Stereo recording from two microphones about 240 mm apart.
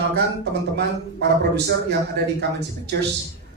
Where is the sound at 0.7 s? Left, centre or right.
Right.